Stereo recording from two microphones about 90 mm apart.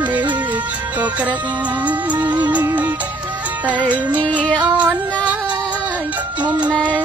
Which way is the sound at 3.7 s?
15° right (ahead or behind).